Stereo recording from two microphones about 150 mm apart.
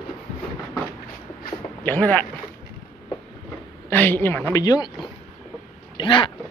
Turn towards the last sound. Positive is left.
turn(degrees=35)  # may be behind; listen again after turning